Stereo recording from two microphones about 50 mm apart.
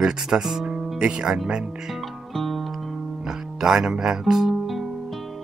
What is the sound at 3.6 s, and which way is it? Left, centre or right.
Speech, centre.